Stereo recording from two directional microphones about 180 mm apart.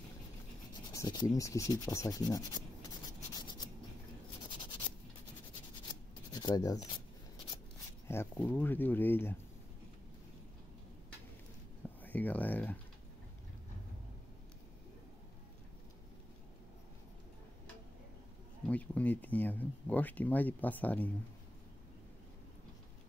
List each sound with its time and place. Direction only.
0.9 s speech: 20° left (ahead or behind)
4.5 s writing: 25° left (ahead or behind)
6.3 s speech: 20° left (ahead or behind)
8.1 s speech: 10° left (ahead or behind)
12.0 s speech: 10° left (ahead or behind)
18.7 s speech: 10° left (ahead or behind)